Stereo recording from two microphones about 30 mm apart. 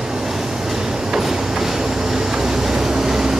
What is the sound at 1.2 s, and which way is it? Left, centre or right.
Train, centre.